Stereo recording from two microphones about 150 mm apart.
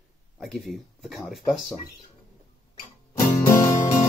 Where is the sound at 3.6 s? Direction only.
60° left (ahead or behind).